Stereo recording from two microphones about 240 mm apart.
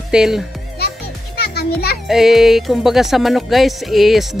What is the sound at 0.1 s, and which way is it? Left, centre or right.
Speech, centre.